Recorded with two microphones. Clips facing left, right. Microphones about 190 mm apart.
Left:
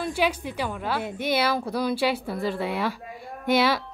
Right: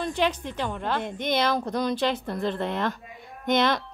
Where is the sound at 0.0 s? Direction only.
10° left (ahead or behind).